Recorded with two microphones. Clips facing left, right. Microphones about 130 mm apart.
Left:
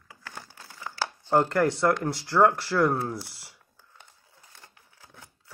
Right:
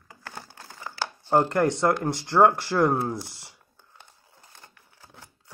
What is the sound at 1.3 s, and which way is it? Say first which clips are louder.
Speech: right 1 dB; 20° right (ahead or behind).